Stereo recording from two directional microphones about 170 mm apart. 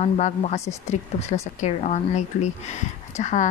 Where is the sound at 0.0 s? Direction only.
40° left (ahead or behind).